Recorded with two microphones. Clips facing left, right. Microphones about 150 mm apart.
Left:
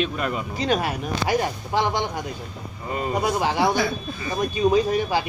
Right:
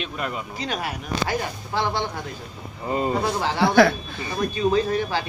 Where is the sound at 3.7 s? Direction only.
75° right (ahead or behind).